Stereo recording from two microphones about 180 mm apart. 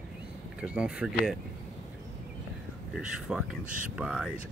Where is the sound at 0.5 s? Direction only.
5° right (ahead or behind).